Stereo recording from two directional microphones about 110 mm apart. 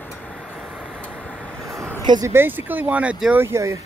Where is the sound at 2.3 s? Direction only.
20° right (ahead or behind).